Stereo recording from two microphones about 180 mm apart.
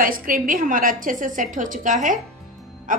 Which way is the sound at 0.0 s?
50° right (ahead or behind).